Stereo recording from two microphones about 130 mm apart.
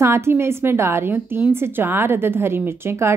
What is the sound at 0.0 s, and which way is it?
A woman's voice, 20° right (ahead or behind).